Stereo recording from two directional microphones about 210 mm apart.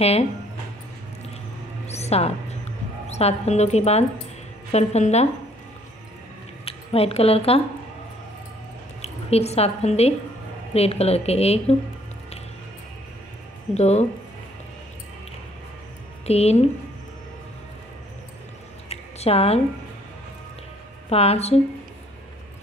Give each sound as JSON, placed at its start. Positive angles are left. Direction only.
{"t": 1.9, "sound": "a sound", "side_deg": 30}
{"t": 3.1, "sound": "a woman's voice", "side_deg": 30}
{"t": 6.6, "sound": "speech", "side_deg": 30}
{"t": 9.0, "sound": "a woman's voice", "side_deg": 30}
{"t": 13.7, "sound": "a woman's voice", "side_deg": 30}
{"t": 16.3, "sound": "a woman's voice", "side_deg": 30}
{"t": 18.9, "sound": "a sound", "side_deg": 30}
{"t": 21.1, "sound": "a woman's voice", "side_deg": 30}